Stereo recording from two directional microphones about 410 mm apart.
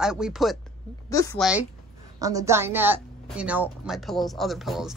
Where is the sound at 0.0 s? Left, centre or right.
Centre.